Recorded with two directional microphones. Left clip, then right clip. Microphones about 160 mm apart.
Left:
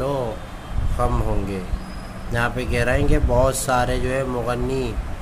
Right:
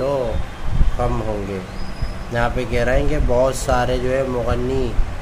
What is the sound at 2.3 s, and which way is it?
Speech, 30° left (ahead or behind).